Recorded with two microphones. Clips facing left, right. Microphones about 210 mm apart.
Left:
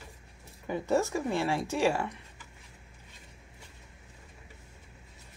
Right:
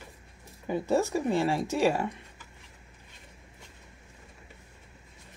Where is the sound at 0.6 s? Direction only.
15° right (ahead or behind).